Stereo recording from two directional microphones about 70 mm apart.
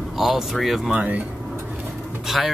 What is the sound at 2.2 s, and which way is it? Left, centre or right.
Speech, centre.